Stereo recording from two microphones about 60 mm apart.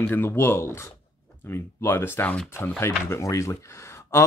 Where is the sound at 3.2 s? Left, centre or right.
Left.